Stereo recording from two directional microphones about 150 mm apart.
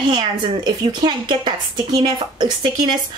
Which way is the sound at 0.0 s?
30° right (ahead or behind).